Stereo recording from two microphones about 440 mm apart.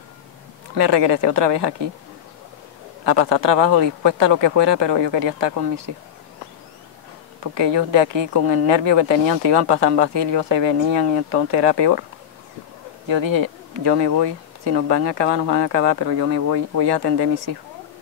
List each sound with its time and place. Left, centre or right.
0.7 s speech: right
3.1 s speech: right
7.5 s speech: right
13.1 s speech: right